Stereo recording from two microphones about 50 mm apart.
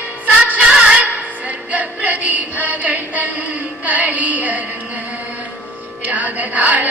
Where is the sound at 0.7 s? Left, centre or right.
Centre.